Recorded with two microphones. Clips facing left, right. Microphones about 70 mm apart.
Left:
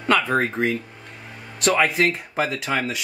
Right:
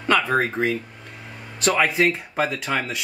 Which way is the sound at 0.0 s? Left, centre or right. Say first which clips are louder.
Even; centre.